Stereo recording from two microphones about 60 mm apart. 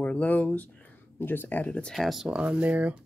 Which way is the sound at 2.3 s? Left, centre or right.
Right.